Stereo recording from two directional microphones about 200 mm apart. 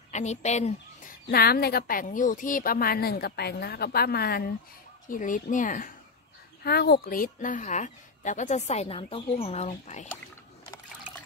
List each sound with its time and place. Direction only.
0.1 s a woman's voice: 35° left (ahead or behind)
1.2 s a woman's voice: 50° left (ahead or behind)
6.6 s a woman's voice: 50° left (ahead or behind); by 10.0 s 35° left (ahead or behind)